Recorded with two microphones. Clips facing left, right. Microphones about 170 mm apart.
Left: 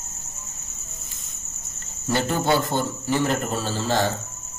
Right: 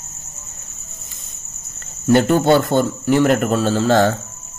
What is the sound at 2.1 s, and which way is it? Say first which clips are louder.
Speech: right 9 dB; 60° right (ahead or behind).